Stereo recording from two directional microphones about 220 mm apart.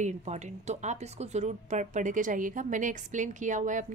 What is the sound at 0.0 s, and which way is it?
A woman's voice, 30° right (ahead or behind).